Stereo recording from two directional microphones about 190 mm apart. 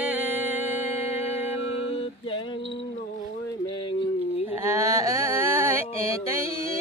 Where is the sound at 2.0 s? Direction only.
25° left (ahead or behind).